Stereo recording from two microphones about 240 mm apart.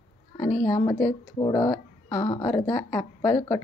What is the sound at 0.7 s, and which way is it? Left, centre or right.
Speech, centre.